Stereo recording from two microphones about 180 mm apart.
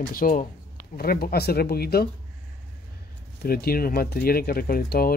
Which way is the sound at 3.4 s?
55° left (ahead or behind).